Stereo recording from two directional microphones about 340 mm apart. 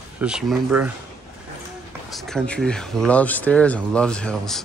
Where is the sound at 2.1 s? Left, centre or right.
Centre.